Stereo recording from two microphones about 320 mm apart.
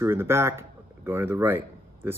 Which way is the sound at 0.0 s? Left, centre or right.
Centre.